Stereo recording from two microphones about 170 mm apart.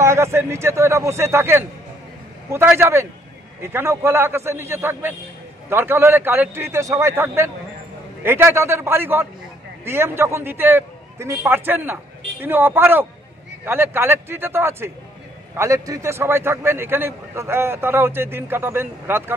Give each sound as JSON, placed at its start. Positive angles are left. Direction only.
{"t": 0.0, "sound": "a man's voice", "side_deg": -15}